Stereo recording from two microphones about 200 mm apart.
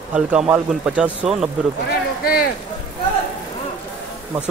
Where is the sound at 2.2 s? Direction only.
50° left (ahead or behind).